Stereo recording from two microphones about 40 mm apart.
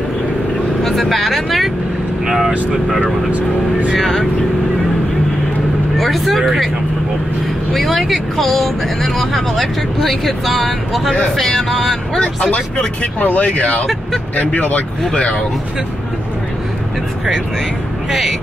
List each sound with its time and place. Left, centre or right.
0.8 s vehicle: centre
2.2 s speech: centre
3.0 s speech: right
3.9 s speech: centre
5.9 s speech: centre
7.7 s speech: centre
12.2 s speech: left